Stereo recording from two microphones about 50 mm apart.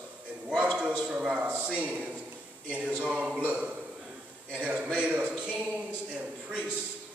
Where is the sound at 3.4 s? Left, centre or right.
Right.